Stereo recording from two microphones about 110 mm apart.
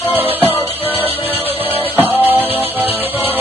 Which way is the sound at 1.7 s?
20° right (ahead or behind).